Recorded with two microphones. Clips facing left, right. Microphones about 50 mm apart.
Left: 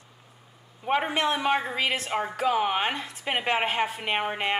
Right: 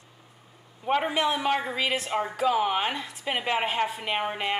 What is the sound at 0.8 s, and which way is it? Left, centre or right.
A woman's voice, centre.